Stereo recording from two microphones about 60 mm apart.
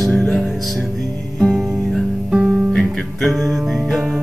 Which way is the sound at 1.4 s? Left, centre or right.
Centre.